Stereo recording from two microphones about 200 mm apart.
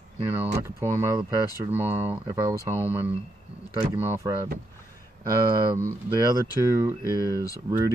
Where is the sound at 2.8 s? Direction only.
10° right (ahead or behind).